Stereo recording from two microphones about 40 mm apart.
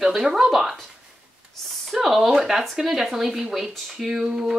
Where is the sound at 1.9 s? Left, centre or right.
Centre.